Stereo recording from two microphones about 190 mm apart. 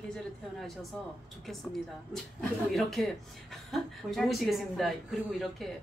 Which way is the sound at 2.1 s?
Centre (ahead or behind).